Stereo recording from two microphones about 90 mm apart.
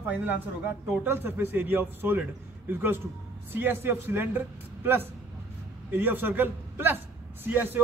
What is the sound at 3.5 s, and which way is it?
Speech, 25° right (ahead or behind).